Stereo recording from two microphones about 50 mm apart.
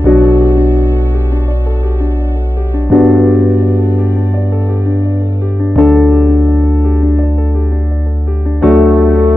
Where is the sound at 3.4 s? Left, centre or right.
Right.